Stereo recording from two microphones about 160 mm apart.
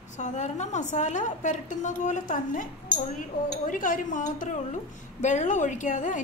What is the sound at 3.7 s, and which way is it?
A woman's voice, 55° left (ahead or behind).